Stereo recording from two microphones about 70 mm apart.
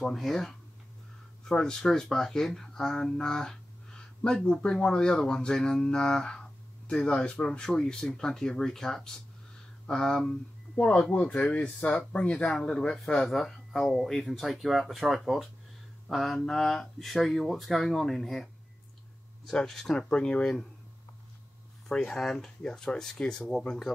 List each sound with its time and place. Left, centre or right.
0.0 s speech: centre
21.8 s speech: centre